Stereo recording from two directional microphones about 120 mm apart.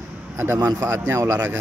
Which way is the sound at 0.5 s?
30° right (ahead or behind).